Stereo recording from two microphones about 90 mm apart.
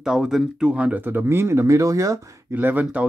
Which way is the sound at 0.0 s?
5° right (ahead or behind).